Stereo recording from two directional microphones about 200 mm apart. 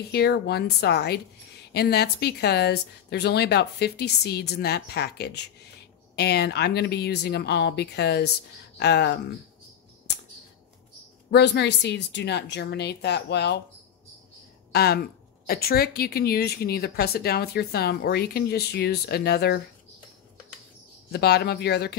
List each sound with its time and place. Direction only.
0.1 s speech: 55° left (ahead or behind)
11.2 s speech: 55° left (ahead or behind)
14.7 s speech: 55° left (ahead or behind)
21.1 s speech: 55° left (ahead or behind)